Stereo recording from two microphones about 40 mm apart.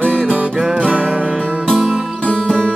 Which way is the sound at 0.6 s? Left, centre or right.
Right.